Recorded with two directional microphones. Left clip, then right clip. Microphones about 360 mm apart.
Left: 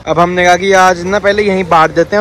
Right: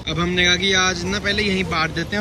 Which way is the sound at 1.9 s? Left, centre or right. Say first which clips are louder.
Left 14 dB; centre.